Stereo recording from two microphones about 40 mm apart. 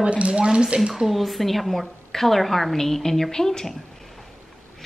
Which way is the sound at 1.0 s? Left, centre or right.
Centre.